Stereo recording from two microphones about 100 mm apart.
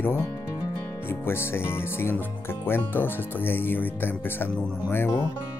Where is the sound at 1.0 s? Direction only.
25° left (ahead or behind).